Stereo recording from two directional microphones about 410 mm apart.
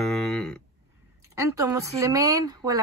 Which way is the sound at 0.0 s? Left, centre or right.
Centre.